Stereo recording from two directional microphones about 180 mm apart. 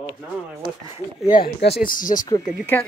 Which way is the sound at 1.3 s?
60° left (ahead or behind).